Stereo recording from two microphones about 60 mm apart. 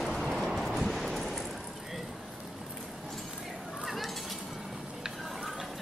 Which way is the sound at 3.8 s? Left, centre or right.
Centre.